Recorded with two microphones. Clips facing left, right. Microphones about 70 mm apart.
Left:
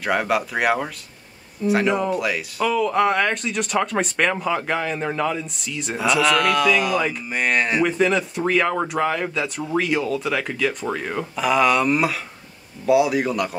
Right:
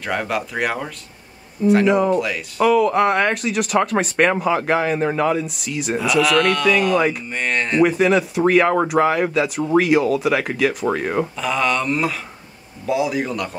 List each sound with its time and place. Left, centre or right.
0.0 s speech: centre
10.9 s speech: centre
11.3 s speech: centre